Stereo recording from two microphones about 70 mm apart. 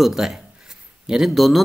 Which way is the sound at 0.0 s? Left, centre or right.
Centre.